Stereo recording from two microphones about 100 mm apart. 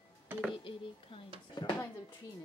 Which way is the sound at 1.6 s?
50° left (ahead or behind).